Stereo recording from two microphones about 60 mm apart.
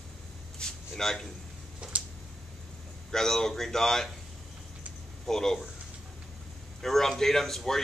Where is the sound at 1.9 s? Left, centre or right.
Right.